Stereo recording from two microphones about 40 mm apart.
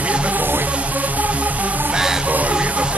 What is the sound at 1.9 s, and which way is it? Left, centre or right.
Music, centre.